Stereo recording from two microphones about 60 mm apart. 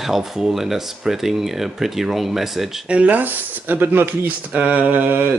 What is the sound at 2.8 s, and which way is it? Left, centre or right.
Speech, right.